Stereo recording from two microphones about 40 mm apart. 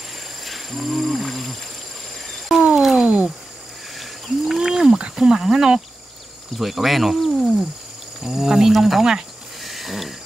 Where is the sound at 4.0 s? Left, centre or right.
Centre.